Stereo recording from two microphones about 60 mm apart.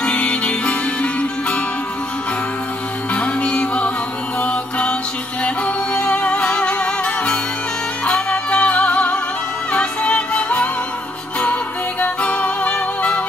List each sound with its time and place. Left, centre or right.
0.0 s music: centre
3.2 s music: centre
4.4 s mantra: left
5.9 s music: left
12.0 s music: centre